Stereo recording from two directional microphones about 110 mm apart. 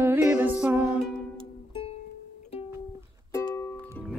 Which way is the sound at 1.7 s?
55° left (ahead or behind).